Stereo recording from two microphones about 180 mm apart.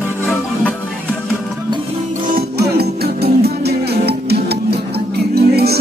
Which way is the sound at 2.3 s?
60° right (ahead or behind).